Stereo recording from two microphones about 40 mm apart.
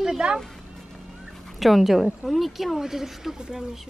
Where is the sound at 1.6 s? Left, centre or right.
Centre.